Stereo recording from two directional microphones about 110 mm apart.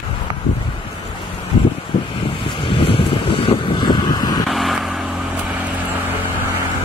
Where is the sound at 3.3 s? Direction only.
45° left (ahead or behind).